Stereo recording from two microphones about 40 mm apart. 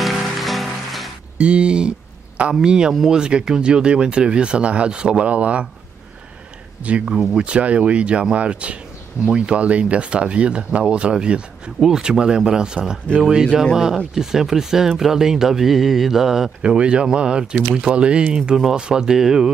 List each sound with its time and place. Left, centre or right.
0.0 s music: centre
1.4 s speech: right
5.2 s speech: right
6.8 s speech: right
14.2 s speech: centre
16.6 s speech: right